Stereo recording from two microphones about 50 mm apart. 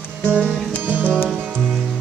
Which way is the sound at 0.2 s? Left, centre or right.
Right.